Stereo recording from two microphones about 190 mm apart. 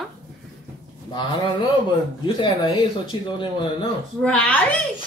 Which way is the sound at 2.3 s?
25° left (ahead or behind).